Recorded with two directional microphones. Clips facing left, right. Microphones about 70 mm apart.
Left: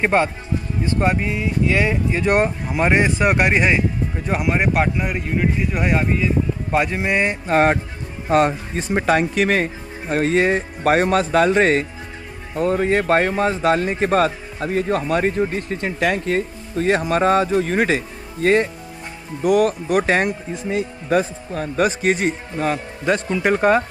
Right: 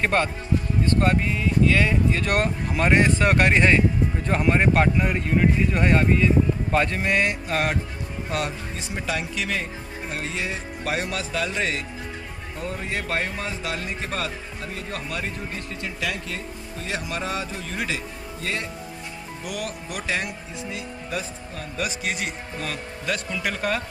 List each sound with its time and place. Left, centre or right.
0.0 s speech: centre